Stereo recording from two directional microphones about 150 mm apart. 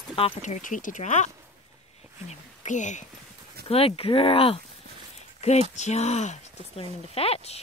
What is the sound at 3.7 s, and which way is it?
Speech, 40° left (ahead or behind).